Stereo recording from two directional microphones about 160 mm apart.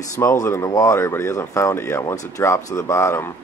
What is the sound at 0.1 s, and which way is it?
Speech, 20° left (ahead or behind).